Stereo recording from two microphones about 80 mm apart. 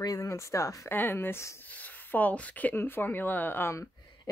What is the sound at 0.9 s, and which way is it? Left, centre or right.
Speech, left.